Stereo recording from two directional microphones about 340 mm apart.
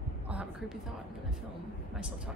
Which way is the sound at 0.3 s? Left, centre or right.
Centre.